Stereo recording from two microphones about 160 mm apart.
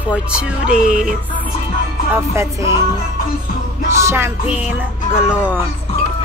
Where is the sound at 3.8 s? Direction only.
15° right (ahead or behind).